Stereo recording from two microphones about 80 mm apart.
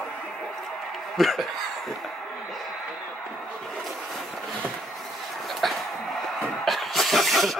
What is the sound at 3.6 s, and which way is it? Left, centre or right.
Vehicle, centre.